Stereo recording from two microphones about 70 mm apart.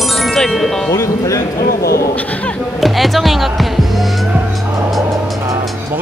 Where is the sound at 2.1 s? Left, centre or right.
Left.